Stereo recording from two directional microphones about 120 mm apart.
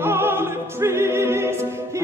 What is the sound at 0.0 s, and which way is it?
Opera, 20° right (ahead or behind).